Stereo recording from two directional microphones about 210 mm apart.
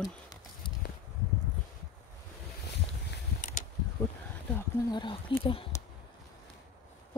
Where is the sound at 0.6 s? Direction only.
25° left (ahead or behind).